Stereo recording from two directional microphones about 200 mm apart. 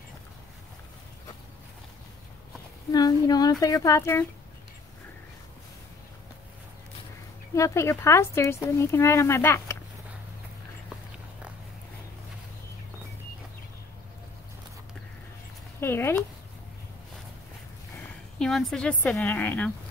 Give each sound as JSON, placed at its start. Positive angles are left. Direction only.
{"t": 2.9, "sound": "speech", "side_deg": 20}
{"t": 7.5, "sound": "speech", "side_deg": 15}
{"t": 15.8, "sound": "speech", "side_deg": 10}
{"t": 18.4, "sound": "speech", "side_deg": 0}